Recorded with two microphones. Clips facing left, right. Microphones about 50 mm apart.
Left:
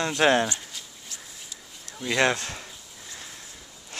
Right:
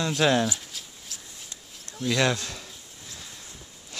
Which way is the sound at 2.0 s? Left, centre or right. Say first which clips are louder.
Left 1 dB; centre.